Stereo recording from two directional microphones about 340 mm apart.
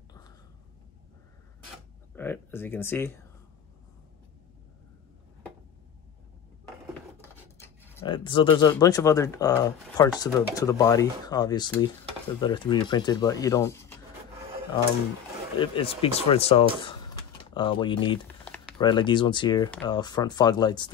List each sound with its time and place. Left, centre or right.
2.1 s speech: centre
7.2 s speech: centre
15.6 s speech: centre